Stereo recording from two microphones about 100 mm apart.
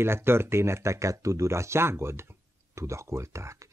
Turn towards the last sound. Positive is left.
turn(degrees=-30)  # may be behind; listen again after turning